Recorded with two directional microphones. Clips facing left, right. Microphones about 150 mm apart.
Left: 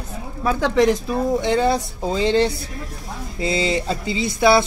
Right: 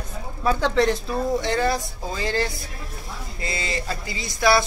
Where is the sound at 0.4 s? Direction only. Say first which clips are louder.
Left 3 dB; 5° left (ahead or behind).